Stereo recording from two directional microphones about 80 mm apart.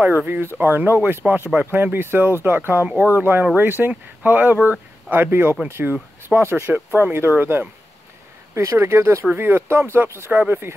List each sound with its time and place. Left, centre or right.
0.0 s speech: right